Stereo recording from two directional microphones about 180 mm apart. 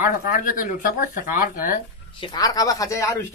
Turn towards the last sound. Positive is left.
turn(degrees=15)  # may be behind; listen again after turning